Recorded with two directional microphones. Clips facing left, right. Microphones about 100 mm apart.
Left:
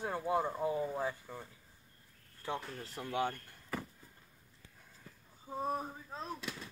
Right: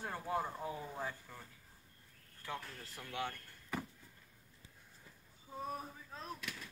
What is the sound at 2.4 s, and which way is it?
Speech, 25° left (ahead or behind).